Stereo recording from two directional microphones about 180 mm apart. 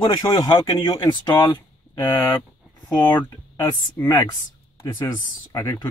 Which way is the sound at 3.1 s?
20° left (ahead or behind).